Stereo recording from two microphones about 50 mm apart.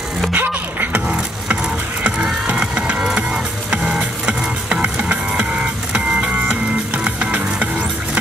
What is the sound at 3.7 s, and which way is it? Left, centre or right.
Music, right.